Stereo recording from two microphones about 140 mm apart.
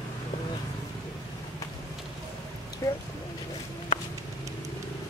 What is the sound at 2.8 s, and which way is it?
Speech, 25° left (ahead or behind).